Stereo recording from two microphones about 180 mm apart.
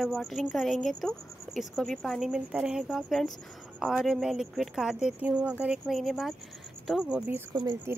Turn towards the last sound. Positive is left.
turn(degrees=-20)  # may be behind; listen again after turning